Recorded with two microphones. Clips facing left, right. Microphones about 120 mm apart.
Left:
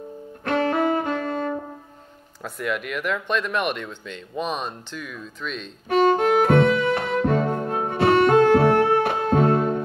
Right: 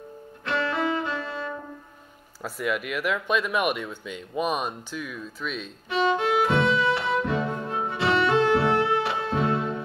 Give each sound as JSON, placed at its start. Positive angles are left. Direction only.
{"t": 0.5, "sound": "music", "side_deg": 50}
{"t": 2.4, "sound": "speech", "side_deg": -5}
{"t": 5.9, "sound": "music", "side_deg": 50}